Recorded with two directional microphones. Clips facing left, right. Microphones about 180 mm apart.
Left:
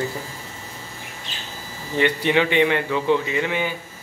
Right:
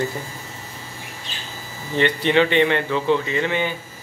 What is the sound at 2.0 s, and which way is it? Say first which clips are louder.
A man's voice: right 2 dB; 10° left (ahead or behind).